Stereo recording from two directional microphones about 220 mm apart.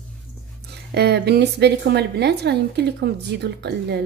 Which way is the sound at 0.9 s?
50° right (ahead or behind).